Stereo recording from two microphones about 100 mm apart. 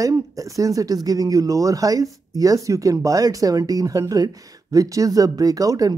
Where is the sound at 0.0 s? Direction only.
35° right (ahead or behind).